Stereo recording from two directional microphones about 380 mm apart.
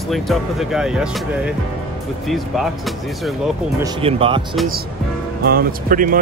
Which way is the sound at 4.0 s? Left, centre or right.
Centre.